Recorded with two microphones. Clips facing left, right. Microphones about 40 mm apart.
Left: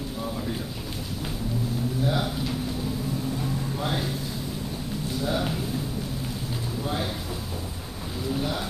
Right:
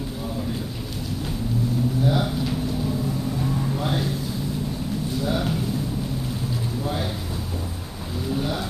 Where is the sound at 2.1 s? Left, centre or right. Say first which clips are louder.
Right 4 dB; centre.